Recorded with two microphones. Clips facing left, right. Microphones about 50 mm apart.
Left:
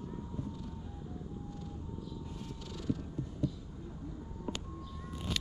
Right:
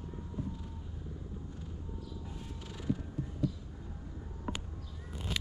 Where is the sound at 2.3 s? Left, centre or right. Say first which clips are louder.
Left 1 dB; right.